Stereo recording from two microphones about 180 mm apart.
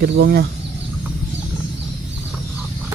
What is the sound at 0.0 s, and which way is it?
Speech, 60° right (ahead or behind).